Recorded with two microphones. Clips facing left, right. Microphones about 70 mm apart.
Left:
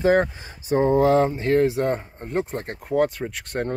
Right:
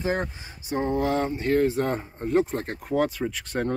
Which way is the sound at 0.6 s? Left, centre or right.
Left.